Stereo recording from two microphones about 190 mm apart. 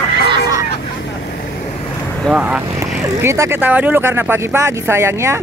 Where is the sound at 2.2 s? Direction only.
5° right (ahead or behind).